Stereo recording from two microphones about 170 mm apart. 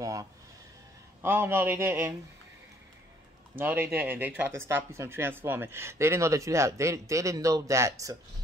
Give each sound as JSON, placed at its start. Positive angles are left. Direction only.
{"t": 0.0, "sound": "speech", "side_deg": -20}
{"t": 3.5, "sound": "speech", "side_deg": -10}